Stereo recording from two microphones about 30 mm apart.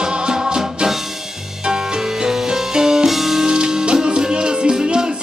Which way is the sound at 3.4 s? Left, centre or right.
Right.